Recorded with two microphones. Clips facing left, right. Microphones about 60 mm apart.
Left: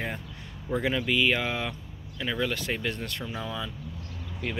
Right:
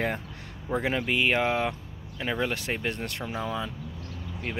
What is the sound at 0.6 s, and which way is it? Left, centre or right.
Speech, right.